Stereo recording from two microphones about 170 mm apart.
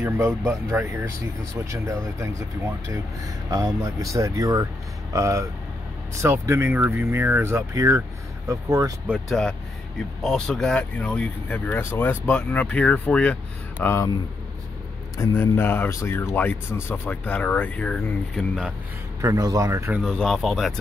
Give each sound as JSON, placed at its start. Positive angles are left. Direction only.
{"t": 0.0, "sound": "speech", "side_deg": -15}
{"t": 3.4, "sound": "speech", "side_deg": -20}
{"t": 9.0, "sound": "speech", "side_deg": -5}
{"t": 15.1, "sound": "speech", "side_deg": 15}
{"t": 19.2, "sound": "speech", "side_deg": -20}
{"t": 20.0, "sound": "speech", "side_deg": 0}